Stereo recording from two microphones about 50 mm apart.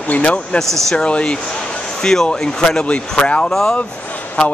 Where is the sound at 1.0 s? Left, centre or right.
Left.